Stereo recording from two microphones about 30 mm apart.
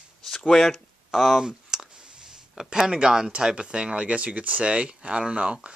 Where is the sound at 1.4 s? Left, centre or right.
Centre.